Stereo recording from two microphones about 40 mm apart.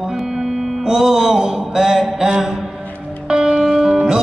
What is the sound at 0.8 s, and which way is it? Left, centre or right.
Mantra, centre.